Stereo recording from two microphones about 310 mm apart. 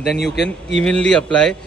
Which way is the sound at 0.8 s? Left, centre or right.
Centre.